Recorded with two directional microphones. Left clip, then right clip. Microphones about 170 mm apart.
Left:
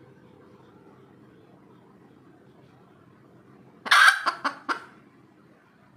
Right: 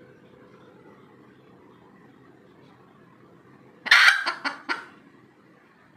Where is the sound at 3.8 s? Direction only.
25° left (ahead or behind).